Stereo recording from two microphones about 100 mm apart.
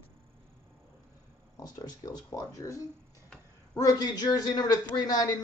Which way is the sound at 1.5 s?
35° left (ahead or behind).